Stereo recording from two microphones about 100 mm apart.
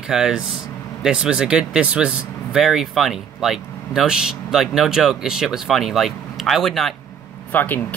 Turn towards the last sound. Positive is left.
turn(degrees=20)  # may be behind; listen again after turning